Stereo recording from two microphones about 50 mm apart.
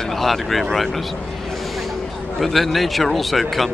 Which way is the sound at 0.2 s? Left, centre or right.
Centre.